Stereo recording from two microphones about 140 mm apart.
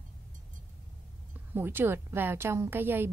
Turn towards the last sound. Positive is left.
turn(degrees=-15)  # may be behind; listen again after turning